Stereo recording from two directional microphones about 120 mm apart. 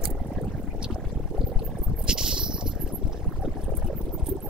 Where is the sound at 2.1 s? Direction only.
5° right (ahead or behind).